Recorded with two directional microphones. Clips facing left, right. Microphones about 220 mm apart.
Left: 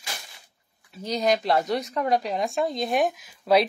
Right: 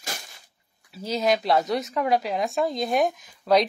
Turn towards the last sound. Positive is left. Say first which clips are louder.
# even
turn(degrees=5)  # may be behind; listen again after turning